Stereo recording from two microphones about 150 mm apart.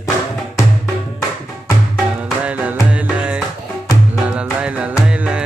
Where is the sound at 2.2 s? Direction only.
10° right (ahead or behind).